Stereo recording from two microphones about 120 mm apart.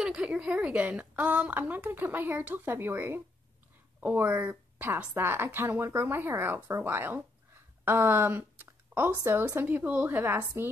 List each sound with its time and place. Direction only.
0.0 s a woman's voice: 10° right (ahead or behind)